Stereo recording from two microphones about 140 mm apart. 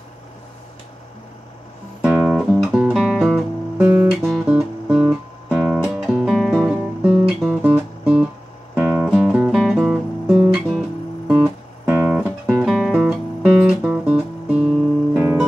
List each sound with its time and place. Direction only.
2.0 s guitar: 10° right (ahead or behind)
2.5 s music: 5° right (ahead or behind)
3.7 s guitar: 15° right (ahead or behind)
4.5 s music: 5° right (ahead or behind)
11.8 s music: 10° right (ahead or behind)